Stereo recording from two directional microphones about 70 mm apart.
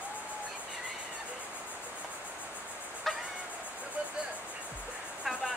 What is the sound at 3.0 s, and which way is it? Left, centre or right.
Music, centre.